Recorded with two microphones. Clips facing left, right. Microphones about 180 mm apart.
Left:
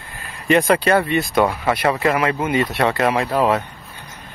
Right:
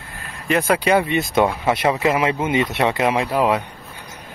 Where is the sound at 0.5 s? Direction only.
5° right (ahead or behind).